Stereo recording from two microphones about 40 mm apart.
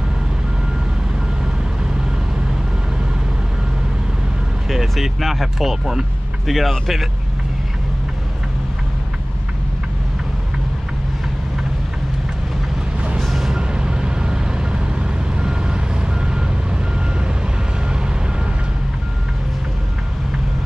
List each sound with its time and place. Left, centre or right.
4.6 s speech: centre
13.2 s reversing beeps: centre
13.5 s vehicle: right